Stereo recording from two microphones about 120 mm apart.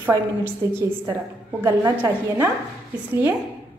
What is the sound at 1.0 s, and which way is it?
A woman's voice, 25° right (ahead or behind).